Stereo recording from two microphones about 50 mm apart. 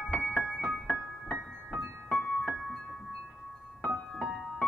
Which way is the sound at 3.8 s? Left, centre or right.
Centre.